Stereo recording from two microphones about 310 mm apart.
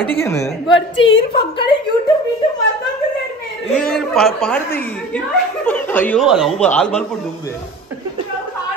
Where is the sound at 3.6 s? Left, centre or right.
Centre.